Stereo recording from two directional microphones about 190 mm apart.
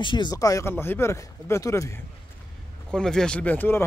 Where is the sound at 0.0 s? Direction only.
25° left (ahead or behind).